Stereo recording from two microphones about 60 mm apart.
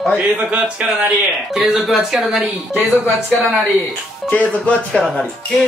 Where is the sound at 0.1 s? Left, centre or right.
Centre.